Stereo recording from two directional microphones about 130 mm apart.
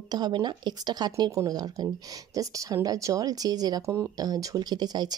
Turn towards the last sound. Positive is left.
turn(degrees=-30)  # may be behind; listen again after turning